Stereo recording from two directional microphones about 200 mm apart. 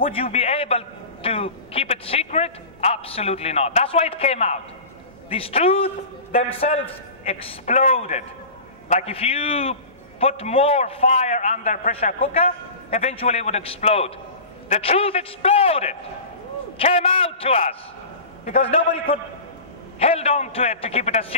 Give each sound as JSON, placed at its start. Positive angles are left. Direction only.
{"t": 0.0, "sound": "a man's voice", "side_deg": 30}